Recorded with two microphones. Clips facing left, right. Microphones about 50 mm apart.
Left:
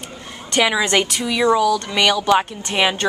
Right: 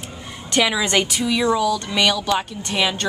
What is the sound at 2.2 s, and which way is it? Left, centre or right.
Speech, left.